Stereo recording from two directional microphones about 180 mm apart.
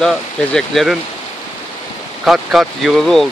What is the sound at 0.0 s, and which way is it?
Speech, 5° left (ahead or behind).